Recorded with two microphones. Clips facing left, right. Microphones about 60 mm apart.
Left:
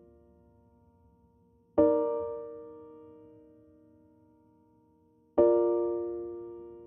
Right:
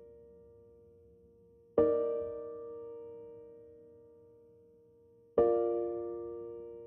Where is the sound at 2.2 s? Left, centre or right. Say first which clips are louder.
Left 3 dB; left.